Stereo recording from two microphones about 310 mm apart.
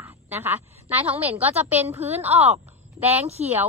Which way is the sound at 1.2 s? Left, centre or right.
Centre.